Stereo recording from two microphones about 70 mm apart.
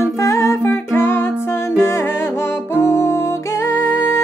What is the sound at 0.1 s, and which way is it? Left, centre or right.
Music, left.